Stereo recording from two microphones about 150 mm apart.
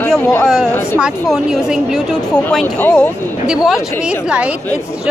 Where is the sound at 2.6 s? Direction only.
20° left (ahead or behind).